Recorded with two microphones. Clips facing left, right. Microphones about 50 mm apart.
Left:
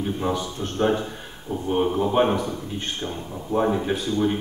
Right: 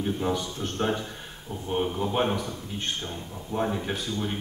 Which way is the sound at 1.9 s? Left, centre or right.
Left.